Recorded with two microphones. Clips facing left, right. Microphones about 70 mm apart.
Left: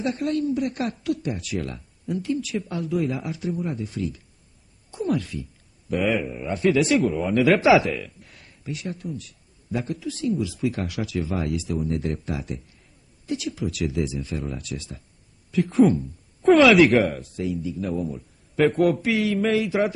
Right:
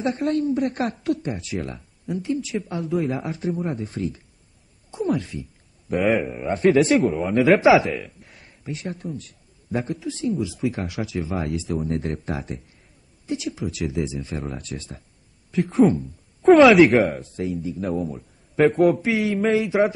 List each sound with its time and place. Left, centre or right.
0.0 s speech: right
3.2 s speech: right
4.9 s speech: right
5.9 s a man's voice: right
7.2 s speech: centre
7.4 s speech: right
11.7 s speech: right
13.3 s speech: right
15.5 s speech: right
17.4 s speech: right
18.7 s a man's voice: centre
19.0 s speech: right